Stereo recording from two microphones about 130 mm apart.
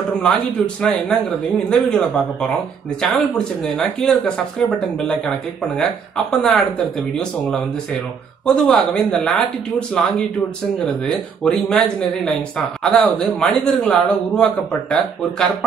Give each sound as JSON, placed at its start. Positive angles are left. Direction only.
{"t": 0.2, "sound": "speech", "side_deg": 5}
{"t": 8.5, "sound": "speech", "side_deg": 5}